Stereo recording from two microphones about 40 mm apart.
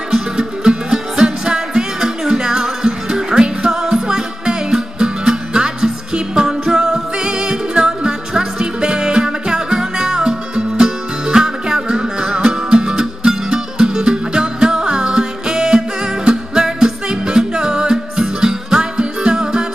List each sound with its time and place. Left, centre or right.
0.1 s music: centre